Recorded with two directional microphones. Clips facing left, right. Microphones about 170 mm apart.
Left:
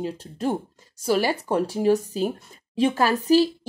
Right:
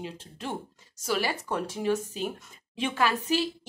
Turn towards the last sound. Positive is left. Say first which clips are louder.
# left 8 dB
turn(degrees=35)  # may be behind; listen again after turning